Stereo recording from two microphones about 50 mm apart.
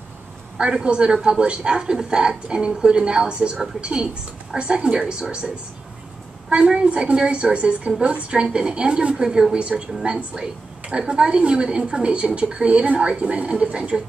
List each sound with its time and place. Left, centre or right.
0.6 s a man's voice: centre
6.8 s a woman's voice: right